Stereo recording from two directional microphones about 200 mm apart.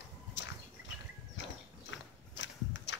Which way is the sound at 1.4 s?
65° left (ahead or behind).